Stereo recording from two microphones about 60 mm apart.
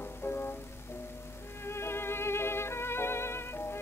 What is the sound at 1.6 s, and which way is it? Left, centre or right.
Music, left.